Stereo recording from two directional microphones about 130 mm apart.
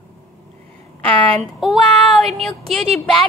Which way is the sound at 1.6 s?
Centre (ahead or behind).